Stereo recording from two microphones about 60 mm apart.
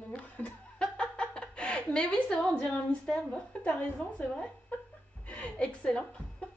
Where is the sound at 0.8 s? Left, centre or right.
Centre.